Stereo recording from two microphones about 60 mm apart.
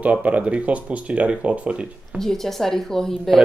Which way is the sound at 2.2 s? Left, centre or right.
Centre.